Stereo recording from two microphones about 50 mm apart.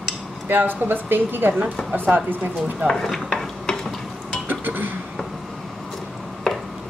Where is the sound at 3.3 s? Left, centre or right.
Centre.